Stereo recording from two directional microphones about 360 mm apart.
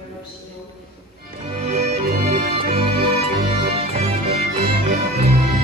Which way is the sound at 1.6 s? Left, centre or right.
Centre.